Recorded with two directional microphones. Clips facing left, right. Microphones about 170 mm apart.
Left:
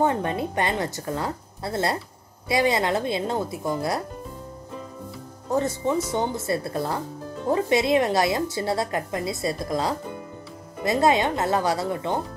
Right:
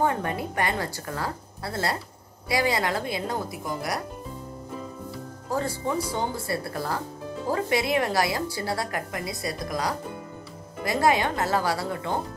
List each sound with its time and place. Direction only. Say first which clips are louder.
0.0 s speech: left 3 dB; 25° left (ahead or behind)
5.5 s speech: left 4 dB; 20° left (ahead or behind)